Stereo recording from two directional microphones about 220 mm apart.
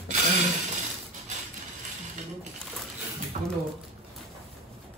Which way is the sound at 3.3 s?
30° right (ahead or behind).